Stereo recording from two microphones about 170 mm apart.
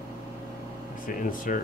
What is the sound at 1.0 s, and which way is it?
Speech, 50° left (ahead or behind).